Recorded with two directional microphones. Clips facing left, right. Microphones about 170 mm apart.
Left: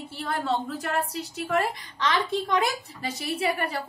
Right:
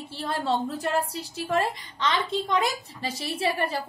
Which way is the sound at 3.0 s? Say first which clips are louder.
Even; 30° right (ahead or behind).